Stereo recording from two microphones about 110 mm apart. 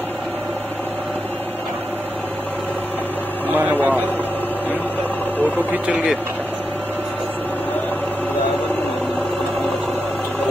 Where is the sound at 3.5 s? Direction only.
15° right (ahead or behind).